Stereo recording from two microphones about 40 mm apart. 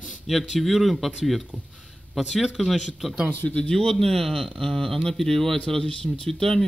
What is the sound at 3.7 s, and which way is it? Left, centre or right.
Speech, centre.